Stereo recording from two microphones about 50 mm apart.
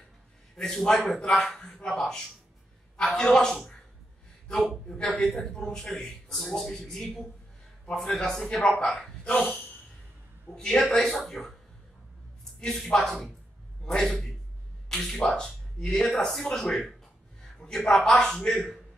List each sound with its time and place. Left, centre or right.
0.6 s a man's voice: centre
9.2 s a sound: centre
10.5 s a man's voice: centre
12.5 s a man's voice: centre